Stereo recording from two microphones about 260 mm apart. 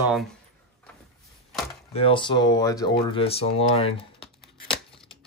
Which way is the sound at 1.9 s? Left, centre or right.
Centre.